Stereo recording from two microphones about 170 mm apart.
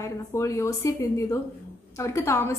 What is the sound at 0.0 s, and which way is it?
A woman's voice, 15° left (ahead or behind).